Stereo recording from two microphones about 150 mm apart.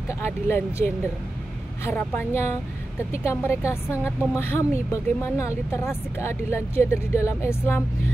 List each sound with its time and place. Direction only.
0.5 s speech: 15° left (ahead or behind)